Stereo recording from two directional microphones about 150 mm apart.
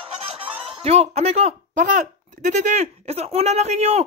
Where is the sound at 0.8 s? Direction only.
45° right (ahead or behind).